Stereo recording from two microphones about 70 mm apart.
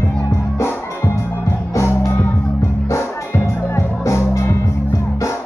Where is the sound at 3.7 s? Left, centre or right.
Left.